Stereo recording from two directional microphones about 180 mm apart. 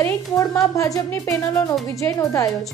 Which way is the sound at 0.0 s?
15° left (ahead or behind).